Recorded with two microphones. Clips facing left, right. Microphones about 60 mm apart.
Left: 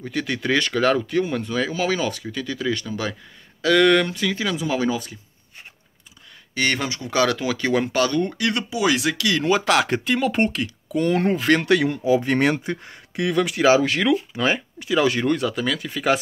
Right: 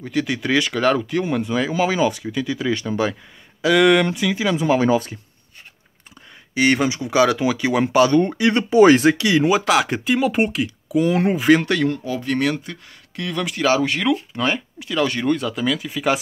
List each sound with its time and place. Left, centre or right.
0.0 s speech: centre
4.6 s speech: right
6.5 s speech: centre
8.6 s speech: right
9.1 s speech: right
9.5 s speech: centre
12.2 s speech: left
13.3 s speech: centre